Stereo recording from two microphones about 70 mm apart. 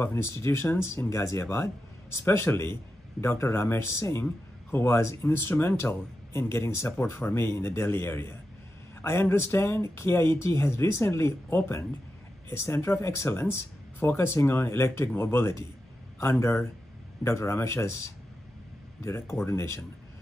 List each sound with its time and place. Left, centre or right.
0.0 s a man's voice: left